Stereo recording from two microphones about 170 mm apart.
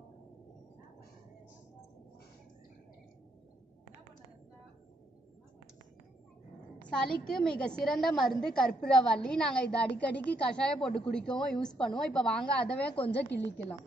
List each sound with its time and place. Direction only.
6.9 s a woman's voice: 5° left (ahead or behind)
12.9 s a woman's voice: 35° left (ahead or behind)